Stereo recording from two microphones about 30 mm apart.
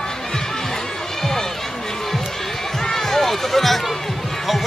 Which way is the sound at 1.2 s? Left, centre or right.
Centre.